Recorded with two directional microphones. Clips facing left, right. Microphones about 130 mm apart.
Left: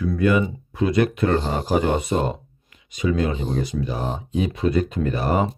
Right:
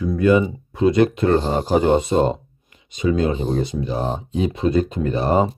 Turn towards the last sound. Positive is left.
turn(degrees=-25)  # may be behind; listen again after turning